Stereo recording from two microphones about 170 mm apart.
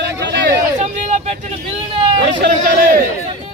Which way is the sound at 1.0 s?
40° right (ahead or behind).